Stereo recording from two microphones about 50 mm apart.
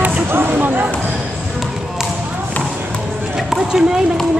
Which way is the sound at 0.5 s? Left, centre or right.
Right.